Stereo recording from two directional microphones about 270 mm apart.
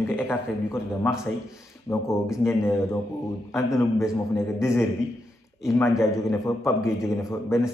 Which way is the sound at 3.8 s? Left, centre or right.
Centre.